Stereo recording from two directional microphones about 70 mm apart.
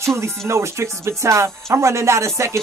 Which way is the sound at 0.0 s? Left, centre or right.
Right.